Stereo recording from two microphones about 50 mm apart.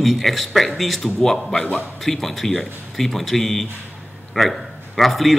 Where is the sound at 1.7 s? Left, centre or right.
Left.